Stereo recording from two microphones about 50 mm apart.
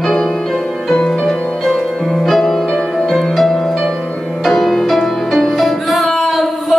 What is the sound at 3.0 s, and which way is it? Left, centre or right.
Music, centre.